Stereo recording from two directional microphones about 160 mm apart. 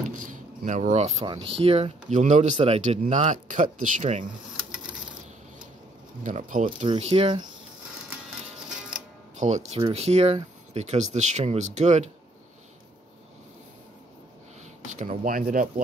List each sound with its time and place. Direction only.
0.2 s a sound: 55° right (ahead or behind)
1.2 s speech: 30° right (ahead or behind); by 4.3 s 50° right (ahead or behind)
6.2 s speech: 50° right (ahead or behind)
6.9 s speech: 40° right (ahead or behind)
9.4 s speech: 45° right (ahead or behind)
15.0 s speech: 60° right (ahead or behind)